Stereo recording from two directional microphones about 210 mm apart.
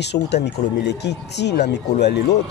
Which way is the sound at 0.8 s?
55° left (ahead or behind).